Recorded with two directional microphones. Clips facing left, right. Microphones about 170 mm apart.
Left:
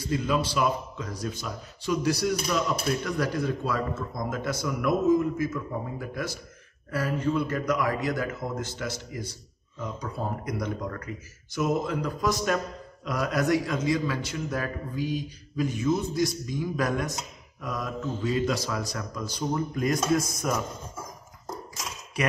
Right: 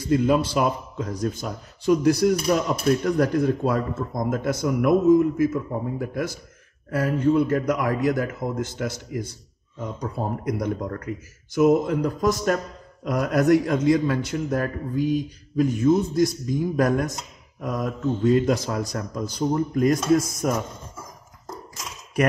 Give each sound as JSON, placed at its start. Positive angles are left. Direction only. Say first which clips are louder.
{"t": 0.1, "sound": "a man's voice", "louder": "right 7 dB", "side_deg": -50}